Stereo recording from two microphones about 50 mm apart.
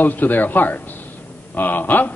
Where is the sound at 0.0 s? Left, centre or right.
Left.